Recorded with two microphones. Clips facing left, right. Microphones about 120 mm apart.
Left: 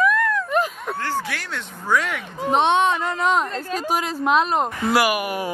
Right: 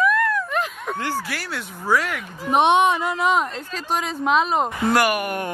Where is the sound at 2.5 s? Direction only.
15° right (ahead or behind).